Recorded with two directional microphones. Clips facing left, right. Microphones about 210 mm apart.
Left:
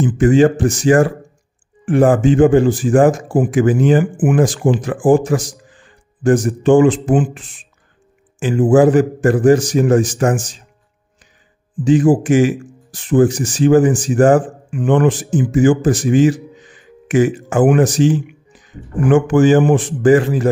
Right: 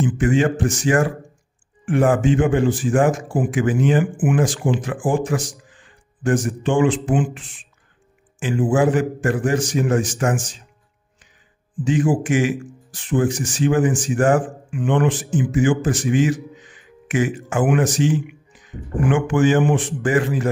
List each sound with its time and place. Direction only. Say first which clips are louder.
0.0 s speech: left 7 dB; 35° left (ahead or behind)
11.8 s speech: left 7 dB; 35° left (ahead or behind)